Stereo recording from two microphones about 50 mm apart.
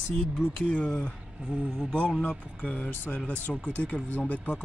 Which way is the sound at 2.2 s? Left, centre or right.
Left.